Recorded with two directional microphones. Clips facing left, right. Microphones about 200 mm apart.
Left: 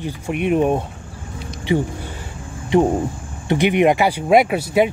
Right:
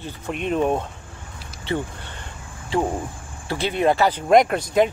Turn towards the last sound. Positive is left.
turn(degrees=10)  # may be behind; listen again after turning